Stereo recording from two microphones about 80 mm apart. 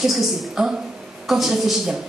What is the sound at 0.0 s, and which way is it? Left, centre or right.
A woman's voice, centre.